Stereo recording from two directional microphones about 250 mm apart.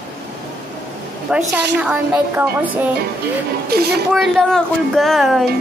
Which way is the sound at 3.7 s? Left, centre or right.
Right.